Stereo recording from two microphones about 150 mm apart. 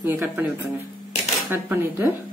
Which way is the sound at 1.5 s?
15° right (ahead or behind).